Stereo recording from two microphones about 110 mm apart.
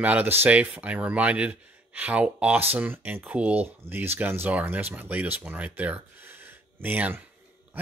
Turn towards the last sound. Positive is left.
turn(degrees=-15)  # may be behind; listen again after turning